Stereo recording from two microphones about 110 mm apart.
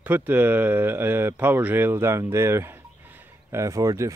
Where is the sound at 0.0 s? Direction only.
15° right (ahead or behind).